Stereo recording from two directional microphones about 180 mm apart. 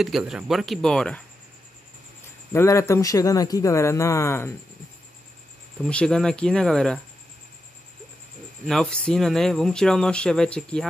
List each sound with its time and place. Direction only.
0.0 s speech: centre (ahead or behind)
2.5 s speech: 15° left (ahead or behind)
5.9 s speech: 5° left (ahead or behind)
8.6 s speech: 5° left (ahead or behind)